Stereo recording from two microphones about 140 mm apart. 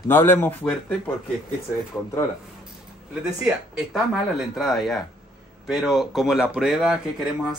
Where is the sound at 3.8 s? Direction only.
5° right (ahead or behind).